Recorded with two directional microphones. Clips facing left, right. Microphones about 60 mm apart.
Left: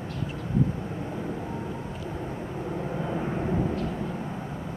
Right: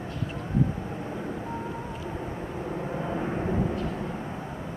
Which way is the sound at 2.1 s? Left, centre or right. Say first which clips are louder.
Left 1 dB; centre.